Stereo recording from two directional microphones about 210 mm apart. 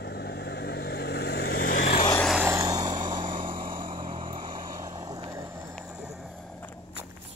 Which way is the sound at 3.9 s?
25° right (ahead or behind).